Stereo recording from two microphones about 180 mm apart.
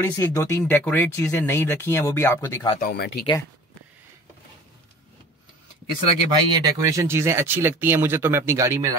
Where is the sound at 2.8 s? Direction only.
60° left (ahead or behind).